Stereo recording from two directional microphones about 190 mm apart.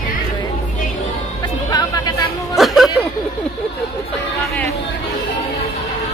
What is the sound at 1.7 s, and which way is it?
Chatter, 20° left (ahead or behind).